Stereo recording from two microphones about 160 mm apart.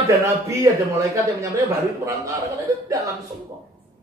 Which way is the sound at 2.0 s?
20° right (ahead or behind).